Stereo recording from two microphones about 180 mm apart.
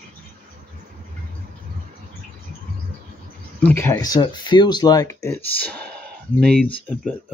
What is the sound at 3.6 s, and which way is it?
Speech, 10° left (ahead or behind).